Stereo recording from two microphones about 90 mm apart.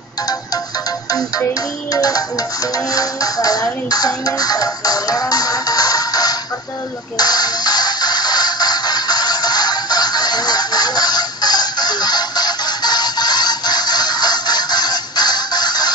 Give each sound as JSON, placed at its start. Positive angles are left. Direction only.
{"t": 1.5, "sound": "speech", "side_deg": 45}
{"t": 7.2, "sound": "music", "side_deg": 50}